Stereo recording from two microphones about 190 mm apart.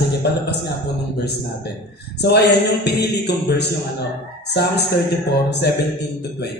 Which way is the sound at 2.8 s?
60° left (ahead or behind).